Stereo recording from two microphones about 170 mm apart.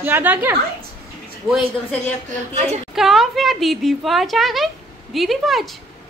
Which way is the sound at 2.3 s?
40° right (ahead or behind).